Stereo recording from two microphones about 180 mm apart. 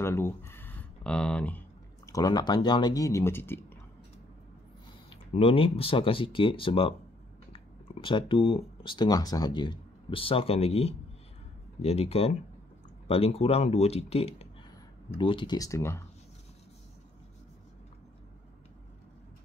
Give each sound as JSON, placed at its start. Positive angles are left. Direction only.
{"t": 0.0, "sound": "speech", "side_deg": 15}
{"t": 2.0, "sound": "speech", "side_deg": 20}
{"t": 5.3, "sound": "speech", "side_deg": 30}